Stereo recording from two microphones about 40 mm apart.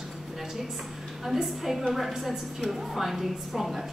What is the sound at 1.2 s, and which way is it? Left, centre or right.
A woman's voice, centre.